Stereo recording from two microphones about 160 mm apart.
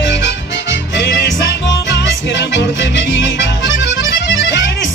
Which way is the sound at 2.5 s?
90° left.